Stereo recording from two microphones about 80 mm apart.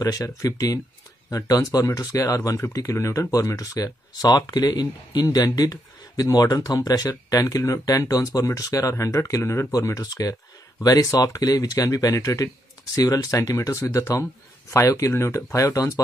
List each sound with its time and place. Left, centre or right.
0.0 s speech: left
9.7 s speech: left